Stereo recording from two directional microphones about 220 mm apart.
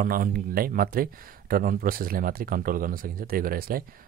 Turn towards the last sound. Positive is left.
turn(degrees=-40)  # may be behind; listen again after turning